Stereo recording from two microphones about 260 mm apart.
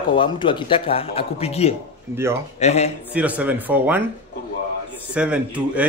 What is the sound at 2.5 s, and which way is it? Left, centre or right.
Speech, left.